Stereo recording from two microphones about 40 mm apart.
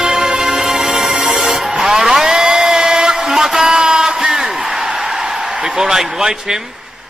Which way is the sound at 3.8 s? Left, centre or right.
Centre.